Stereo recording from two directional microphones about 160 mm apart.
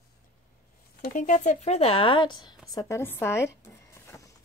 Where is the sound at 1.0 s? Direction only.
55° left (ahead or behind).